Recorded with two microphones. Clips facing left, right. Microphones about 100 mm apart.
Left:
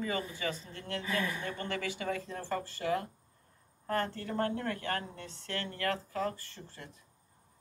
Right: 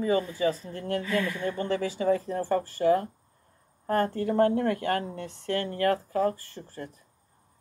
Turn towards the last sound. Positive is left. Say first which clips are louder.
# right 9 dB
turn(degrees=-40)  # may be behind; listen again after turning